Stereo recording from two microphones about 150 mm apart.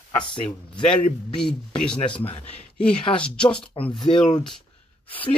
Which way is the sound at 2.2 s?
40° left (ahead or behind).